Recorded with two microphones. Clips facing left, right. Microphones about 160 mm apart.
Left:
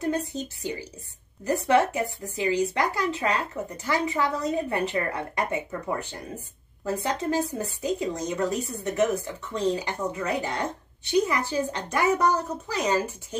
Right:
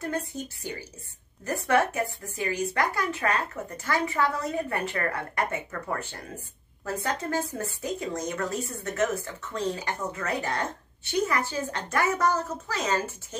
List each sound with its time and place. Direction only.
0.0 s a woman's voice: 20° left (ahead or behind)